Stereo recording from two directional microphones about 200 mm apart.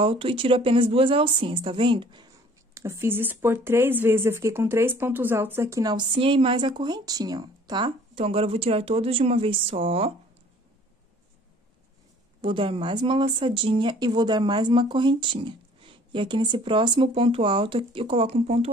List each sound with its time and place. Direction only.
0.0 s speech: 25° right (ahead or behind)
2.7 s speech: 15° right (ahead or behind)
12.4 s speech: 25° right (ahead or behind)